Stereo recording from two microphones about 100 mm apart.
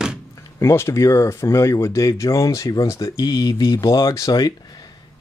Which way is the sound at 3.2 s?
40° left (ahead or behind).